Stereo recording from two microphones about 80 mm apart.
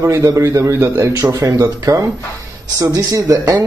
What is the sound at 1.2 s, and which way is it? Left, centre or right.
Speech, right.